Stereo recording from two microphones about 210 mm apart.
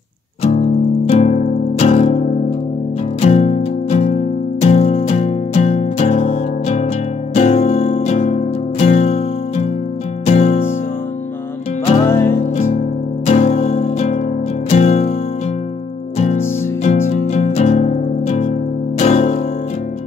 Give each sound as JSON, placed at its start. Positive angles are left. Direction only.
{"t": 1.0, "sound": "music", "side_deg": 30}
{"t": 12.1, "sound": "music", "side_deg": 10}
{"t": 13.3, "sound": "music", "side_deg": 35}
{"t": 16.8, "sound": "music", "side_deg": 35}